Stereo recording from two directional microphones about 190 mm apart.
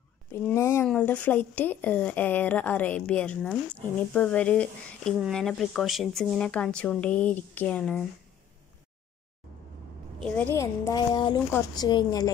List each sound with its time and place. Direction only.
0.3 s a sound: 15° left (ahead or behind)
0.8 s speech: 10° left (ahead or behind)
10.2 s a woman's voice: 10° left (ahead or behind)